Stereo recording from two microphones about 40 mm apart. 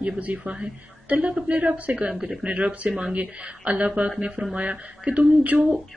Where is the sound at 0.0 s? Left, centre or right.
Right.